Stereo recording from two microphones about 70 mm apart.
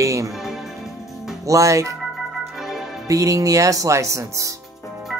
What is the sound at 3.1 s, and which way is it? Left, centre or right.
Speech, right.